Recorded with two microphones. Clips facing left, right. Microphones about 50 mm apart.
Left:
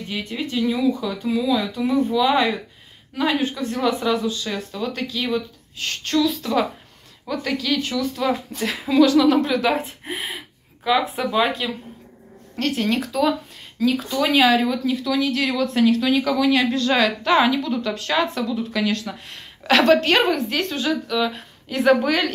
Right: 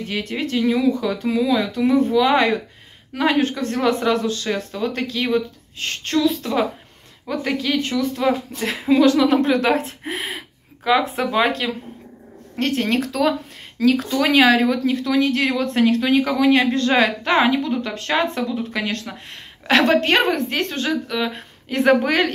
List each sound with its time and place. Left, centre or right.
0.1 s speech: right
0.6 s a woman's voice: right
4.5 s a woman's voice: right
9.5 s a woman's voice: right
9.8 s speech: right
10.8 s speech: right
13.7 s a woman's voice: right